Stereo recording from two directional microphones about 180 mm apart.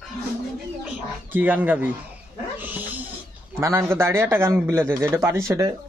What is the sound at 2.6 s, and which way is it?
Roaring cats, 10° right (ahead or behind).